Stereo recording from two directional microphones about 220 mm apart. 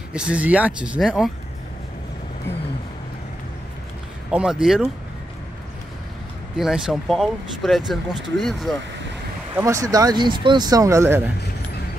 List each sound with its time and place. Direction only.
0.1 s speech: 5° right (ahead or behind)
4.3 s speech: 5° right (ahead or behind)
6.5 s speech: centre (ahead or behind)
9.6 s speech: 15° right (ahead or behind)